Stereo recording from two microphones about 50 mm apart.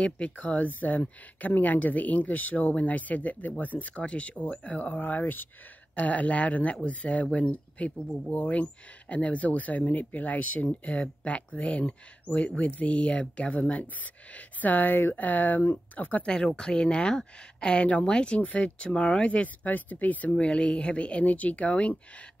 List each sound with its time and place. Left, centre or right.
0.0 s speech: left
16.3 s speech: centre
18.4 s speech: left
18.8 s speech: centre
20.4 s speech: left